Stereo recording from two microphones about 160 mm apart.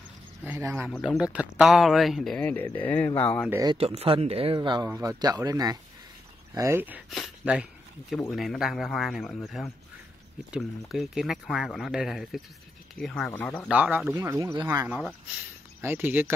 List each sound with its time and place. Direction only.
0.5 s speech: 10° right (ahead or behind)
0.8 s speech: centre (ahead or behind)
2.4 s speech: 10° left (ahead or behind)
3.4 s speech: 20° right (ahead or behind)
3.7 s speech: 40° right (ahead or behind); by 7.0 s 15° right (ahead or behind)
7.1 s speech: 5° right (ahead or behind)
10.9 s speech: centre (ahead or behind)
13.7 s speech: 10° right (ahead or behind); by 14.9 s 25° right (ahead or behind)
15.8 s speech: 15° right (ahead or behind)